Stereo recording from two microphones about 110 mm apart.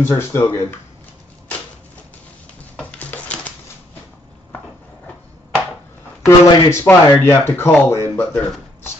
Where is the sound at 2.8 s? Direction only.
15° left (ahead or behind).